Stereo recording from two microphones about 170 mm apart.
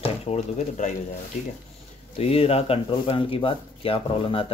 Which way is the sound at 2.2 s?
35° left (ahead or behind).